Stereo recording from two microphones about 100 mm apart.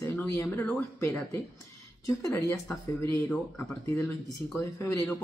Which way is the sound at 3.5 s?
25° left (ahead or behind).